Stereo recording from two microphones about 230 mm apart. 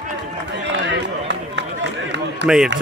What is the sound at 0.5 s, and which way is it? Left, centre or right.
Run, right.